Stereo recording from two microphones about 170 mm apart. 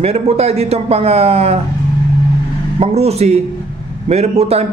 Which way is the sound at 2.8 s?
40° right (ahead or behind).